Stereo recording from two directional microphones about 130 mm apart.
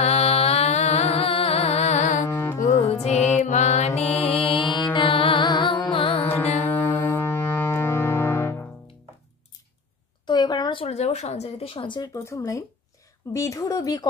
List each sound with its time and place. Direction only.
0.0 s music: 55° left (ahead or behind)
2.2 s carnatic music: 20° left (ahead or behind)
2.9 s music: 55° left (ahead or behind)
6.6 s music: 15° left (ahead or behind)
10.2 s a sound: 35° left (ahead or behind)
10.9 s speech: 60° left (ahead or behind); by 12.0 s 40° left (ahead or behind)
12.0 s a woman's voice: 25° left (ahead or behind)